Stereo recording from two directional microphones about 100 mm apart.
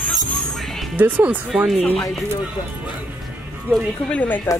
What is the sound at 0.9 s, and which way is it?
Speech, 15° right (ahead or behind).